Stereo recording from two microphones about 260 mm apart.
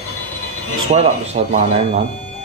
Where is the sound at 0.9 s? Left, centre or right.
Right.